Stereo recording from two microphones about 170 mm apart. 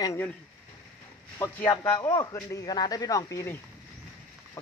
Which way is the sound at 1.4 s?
15° left (ahead or behind).